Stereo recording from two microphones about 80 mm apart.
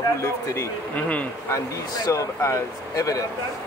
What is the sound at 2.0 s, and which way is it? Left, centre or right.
Speech, left.